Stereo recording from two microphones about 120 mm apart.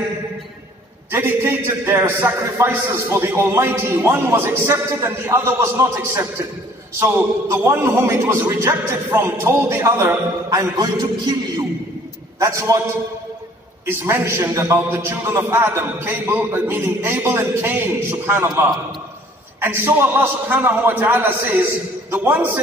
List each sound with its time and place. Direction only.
1.1 s a man's voice: 20° right (ahead or behind)
12.4 s a man's voice: 25° right (ahead or behind)
13.8 s a man's voice: 20° right (ahead or behind)